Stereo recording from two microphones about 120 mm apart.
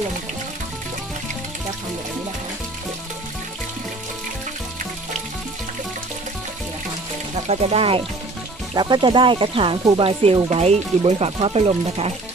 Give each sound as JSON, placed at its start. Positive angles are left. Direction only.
{"t": 7.4, "sound": "speech", "side_deg": -55}
{"t": 8.7, "sound": "speech", "side_deg": -40}